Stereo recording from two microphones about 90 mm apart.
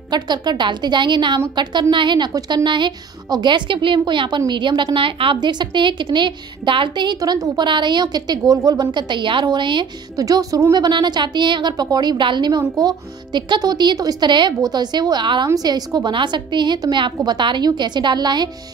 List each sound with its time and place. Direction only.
0.1 s a woman's voice: 55° right (ahead or behind)
4.9 s a woman's voice: 75° right (ahead or behind)
7.2 s a woman's voice: 40° right (ahead or behind)
7.6 s a woman's voice: 60° right (ahead or behind)
10.1 s a woman's voice: 40° right (ahead or behind)
10.7 s a woman's voice: 55° right (ahead or behind)
15.4 s a woman's voice: 45° right (ahead or behind)